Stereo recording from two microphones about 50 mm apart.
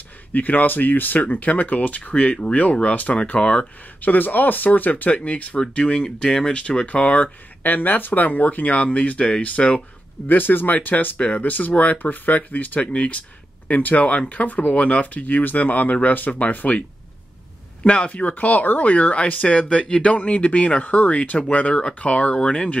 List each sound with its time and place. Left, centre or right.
0.3 s speech: left
4.0 s speech: left
10.2 s speech: left
11.1 s speech: left
17.8 s speech: left